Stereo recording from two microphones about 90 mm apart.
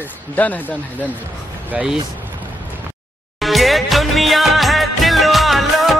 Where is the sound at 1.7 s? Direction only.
10° right (ahead or behind).